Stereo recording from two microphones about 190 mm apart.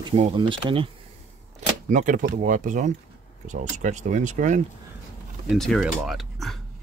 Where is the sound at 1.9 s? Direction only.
40° right (ahead or behind).